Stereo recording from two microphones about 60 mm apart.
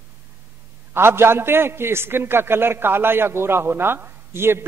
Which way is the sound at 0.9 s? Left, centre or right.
Right.